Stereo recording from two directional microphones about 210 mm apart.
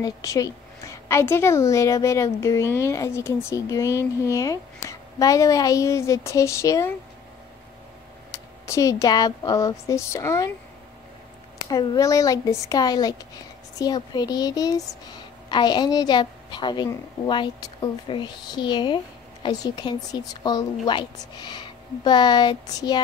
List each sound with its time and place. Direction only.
0.0 s a woman's voice: 15° left (ahead or behind)
8.3 s speech: 15° left (ahead or behind)
11.7 s a woman's voice: 15° left (ahead or behind)